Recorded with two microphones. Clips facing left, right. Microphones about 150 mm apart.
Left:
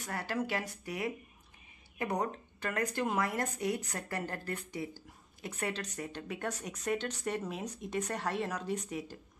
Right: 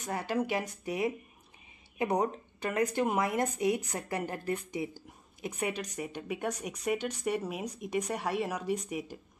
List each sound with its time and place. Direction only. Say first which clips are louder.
0.0 s speech: right 4 dB; 20° right (ahead or behind)